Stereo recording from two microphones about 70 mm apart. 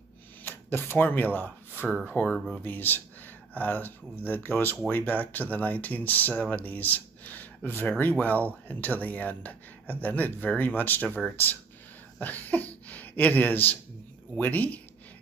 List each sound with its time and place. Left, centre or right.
0.4 s speech: left
2.3 s speech: centre
2.6 s speech: left